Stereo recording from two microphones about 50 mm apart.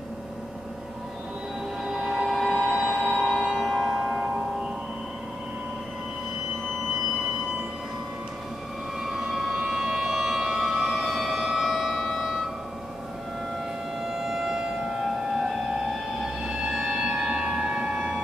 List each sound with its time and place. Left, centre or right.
1.9 s a sound: centre
2.2 s train: centre
3.5 s music: centre
9.0 s civil defense siren: centre
11.5 s siren: centre
14.0 s civil defense siren: centre
15.3 s music: centre